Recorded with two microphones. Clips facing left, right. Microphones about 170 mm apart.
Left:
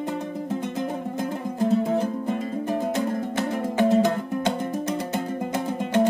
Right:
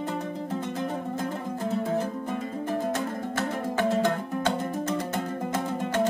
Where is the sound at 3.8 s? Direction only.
15° left (ahead or behind).